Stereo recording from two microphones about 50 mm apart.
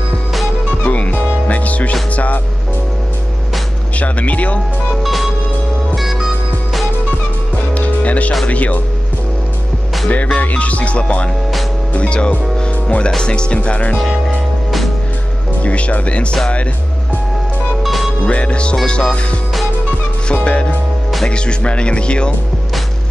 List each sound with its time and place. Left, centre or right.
0.7 s music: left
2.1 s speech: left
4.0 s speech: left
5.0 s music: centre
7.7 s music: left
8.5 s speech: left
10.0 s speech: left
13.9 s speech: centre
15.6 s speech: left
17.8 s music: centre
18.2 s speech: left
20.2 s speech: left